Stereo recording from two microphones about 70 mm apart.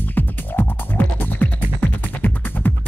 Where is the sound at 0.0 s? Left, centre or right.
Left.